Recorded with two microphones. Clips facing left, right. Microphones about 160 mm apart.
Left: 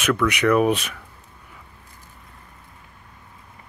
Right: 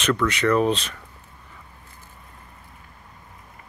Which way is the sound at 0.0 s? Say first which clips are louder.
Left 1 dB; 10° left (ahead or behind).